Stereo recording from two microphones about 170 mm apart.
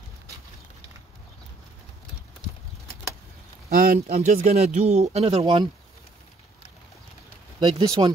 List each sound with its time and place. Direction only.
3.7 s speech: 55° right (ahead or behind); by 5.7 s 25° right (ahead or behind)
7.6 s speech: 25° right (ahead or behind)